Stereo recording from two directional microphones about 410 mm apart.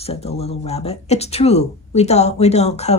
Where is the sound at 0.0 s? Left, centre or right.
Centre.